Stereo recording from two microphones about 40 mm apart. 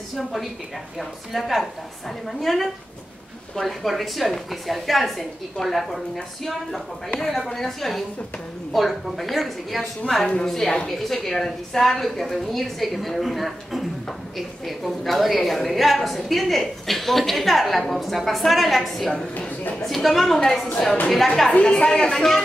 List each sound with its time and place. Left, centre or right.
0.2 s a woman's voice: centre
21.5 s a woman's voice: left
22.1 s speech: centre